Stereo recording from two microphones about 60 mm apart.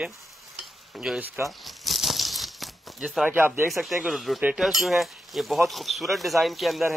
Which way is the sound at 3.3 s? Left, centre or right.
Right.